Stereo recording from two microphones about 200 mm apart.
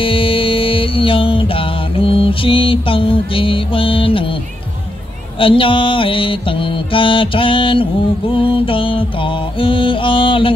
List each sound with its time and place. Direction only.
0.0 s music: 25° left (ahead or behind)
5.4 s music: 25° left (ahead or behind)